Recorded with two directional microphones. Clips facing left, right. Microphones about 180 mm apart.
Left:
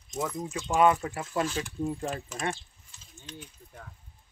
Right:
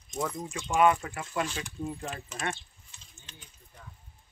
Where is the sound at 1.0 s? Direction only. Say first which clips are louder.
Left 5 dB; 30° left (ahead or behind).